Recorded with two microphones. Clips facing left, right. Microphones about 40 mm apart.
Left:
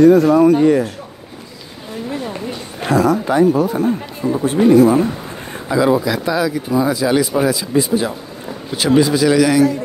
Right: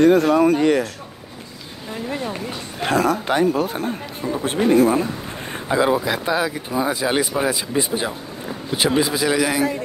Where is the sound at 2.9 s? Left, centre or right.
Right.